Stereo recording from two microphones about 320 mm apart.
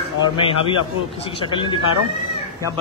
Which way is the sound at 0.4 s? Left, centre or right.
Centre.